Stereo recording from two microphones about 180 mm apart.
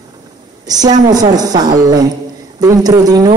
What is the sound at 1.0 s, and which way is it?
A woman's voice, 20° right (ahead or behind).